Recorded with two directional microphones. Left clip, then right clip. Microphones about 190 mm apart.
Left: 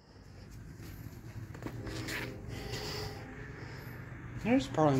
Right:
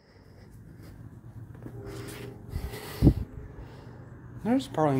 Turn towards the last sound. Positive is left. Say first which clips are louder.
# right 2 dB
turn(degrees=-35)  # may be behind; listen again after turning